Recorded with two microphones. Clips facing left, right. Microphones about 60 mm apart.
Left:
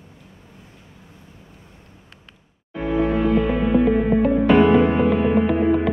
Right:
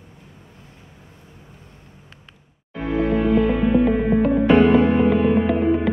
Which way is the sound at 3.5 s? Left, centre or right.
Centre.